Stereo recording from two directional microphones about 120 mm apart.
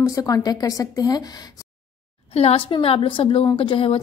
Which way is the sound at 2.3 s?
60° left (ahead or behind).